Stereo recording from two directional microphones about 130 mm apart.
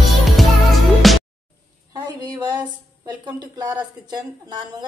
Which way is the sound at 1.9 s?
30° right (ahead or behind).